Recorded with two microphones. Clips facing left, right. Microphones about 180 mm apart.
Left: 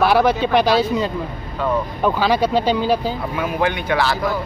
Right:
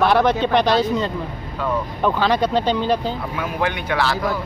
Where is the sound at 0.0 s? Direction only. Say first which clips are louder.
Left 1 dB; 5° left (ahead or behind).